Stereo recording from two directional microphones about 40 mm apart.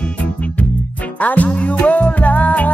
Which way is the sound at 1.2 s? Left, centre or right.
Left.